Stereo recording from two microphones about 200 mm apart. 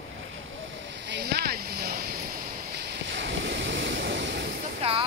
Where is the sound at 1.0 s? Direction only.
55° right (ahead or behind).